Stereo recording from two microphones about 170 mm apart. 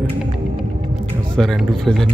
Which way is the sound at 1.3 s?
Centre (ahead or behind).